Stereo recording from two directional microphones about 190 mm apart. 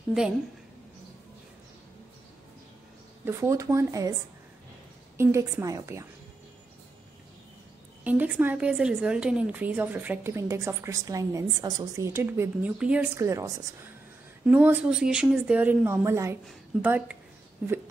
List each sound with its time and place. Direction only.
3.3 s a woman's voice: 15° right (ahead or behind)
5.1 s a woman's voice: 15° right (ahead or behind)
8.0 s a woman's voice: 10° right (ahead or behind)